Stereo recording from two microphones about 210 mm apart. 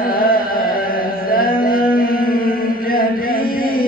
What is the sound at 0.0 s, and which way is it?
Carnatic music, 45° left (ahead or behind).